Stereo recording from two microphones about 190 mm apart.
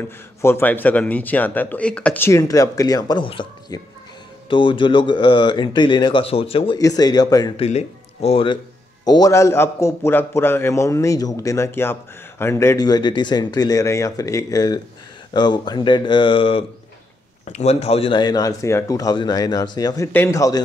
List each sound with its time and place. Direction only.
0.4 s a man's voice: 10° left (ahead or behind)
7.5 s a man's voice: 30° left (ahead or behind); by 20.6 s 15° left (ahead or behind)